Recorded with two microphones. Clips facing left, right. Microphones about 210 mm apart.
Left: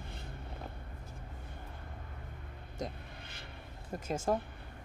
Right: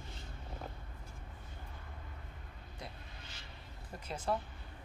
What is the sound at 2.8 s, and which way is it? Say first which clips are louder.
Vehicle: left 9 dB; 55° left (ahead or behind).